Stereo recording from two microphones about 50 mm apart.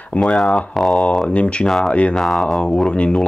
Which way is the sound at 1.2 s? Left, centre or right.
Left.